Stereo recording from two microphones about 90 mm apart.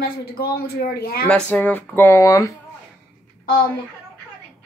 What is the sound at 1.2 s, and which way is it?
Speech, 15° left (ahead or behind).